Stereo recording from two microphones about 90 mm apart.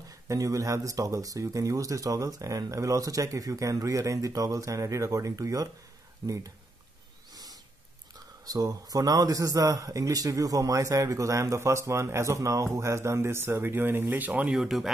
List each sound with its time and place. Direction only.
0.3 s speech: 40° right (ahead or behind)
8.5 s speech: 45° right (ahead or behind); by 14.5 s 20° right (ahead or behind)
14.5 s speech: 5° right (ahead or behind)